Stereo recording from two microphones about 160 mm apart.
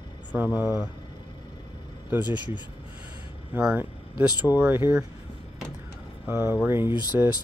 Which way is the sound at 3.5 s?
10° right (ahead or behind).